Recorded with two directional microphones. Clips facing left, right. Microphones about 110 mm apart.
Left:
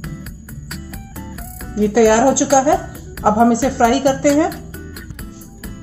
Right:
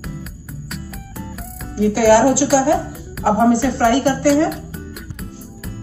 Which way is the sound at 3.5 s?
65° left (ahead or behind).